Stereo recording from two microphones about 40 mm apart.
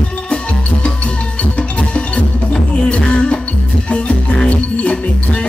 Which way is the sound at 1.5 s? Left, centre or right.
Left.